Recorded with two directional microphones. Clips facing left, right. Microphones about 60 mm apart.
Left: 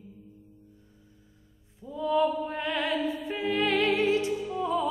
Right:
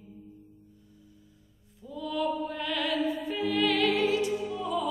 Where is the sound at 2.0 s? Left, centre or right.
Left.